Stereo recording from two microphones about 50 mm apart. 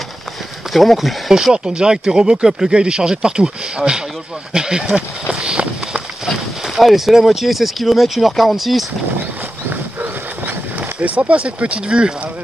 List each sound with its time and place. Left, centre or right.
0.7 s speech: centre
1.3 s speech: centre
6.2 s speech: centre
10.4 s speech: right